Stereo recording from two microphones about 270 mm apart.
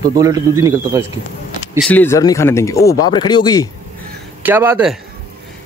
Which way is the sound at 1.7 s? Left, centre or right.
Centre.